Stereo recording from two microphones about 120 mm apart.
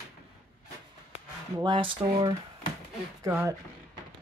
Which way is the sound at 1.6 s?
40° right (ahead or behind).